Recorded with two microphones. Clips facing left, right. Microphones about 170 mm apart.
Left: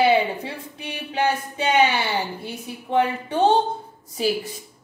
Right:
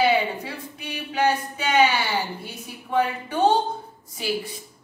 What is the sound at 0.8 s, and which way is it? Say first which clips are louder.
A woman's voice: even; 30° left (ahead or behind).